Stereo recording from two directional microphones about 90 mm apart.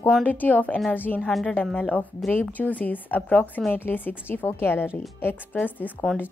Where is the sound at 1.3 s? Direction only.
5° left (ahead or behind).